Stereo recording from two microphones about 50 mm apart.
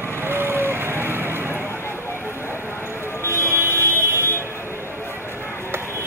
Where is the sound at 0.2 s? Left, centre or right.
Right.